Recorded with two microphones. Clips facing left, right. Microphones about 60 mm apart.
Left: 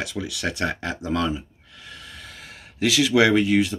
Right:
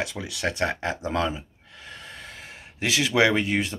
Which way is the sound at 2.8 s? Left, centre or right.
Right.